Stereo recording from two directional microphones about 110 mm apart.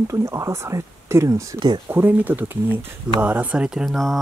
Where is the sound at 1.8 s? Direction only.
20° right (ahead or behind); by 4.1 s centre (ahead or behind).